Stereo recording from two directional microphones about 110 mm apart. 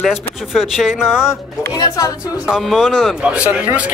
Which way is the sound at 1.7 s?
35° left (ahead or behind).